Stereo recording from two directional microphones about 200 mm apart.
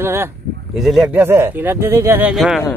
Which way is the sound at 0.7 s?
Centre (ahead or behind).